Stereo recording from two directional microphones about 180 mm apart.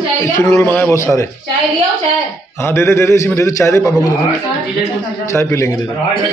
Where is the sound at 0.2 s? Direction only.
15° left (ahead or behind).